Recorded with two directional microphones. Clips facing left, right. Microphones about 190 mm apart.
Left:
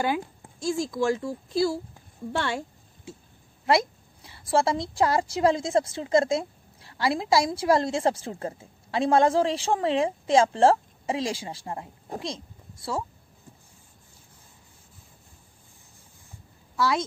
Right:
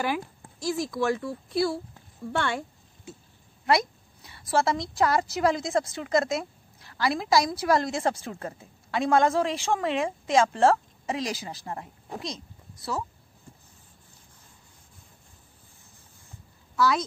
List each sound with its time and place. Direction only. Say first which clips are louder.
0.0 s a woman's voice: left 2 dB; 25° left (ahead or behind)
3.6 s a woman's voice: left 1 dB; 25° left (ahead or behind)
16.7 s a woman's voice: right 1 dB; 25° left (ahead or behind)